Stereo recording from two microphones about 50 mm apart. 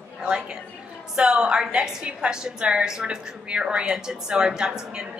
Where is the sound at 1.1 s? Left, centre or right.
Centre.